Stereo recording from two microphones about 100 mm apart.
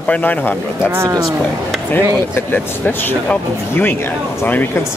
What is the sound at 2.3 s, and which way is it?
Speech, 20° left (ahead or behind).